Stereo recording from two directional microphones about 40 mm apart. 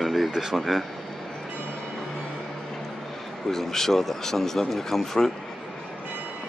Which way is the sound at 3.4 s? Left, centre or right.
Centre.